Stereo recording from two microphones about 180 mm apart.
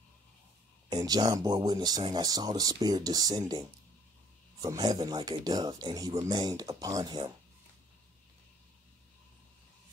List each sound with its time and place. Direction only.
0.8 s speech: 20° right (ahead or behind)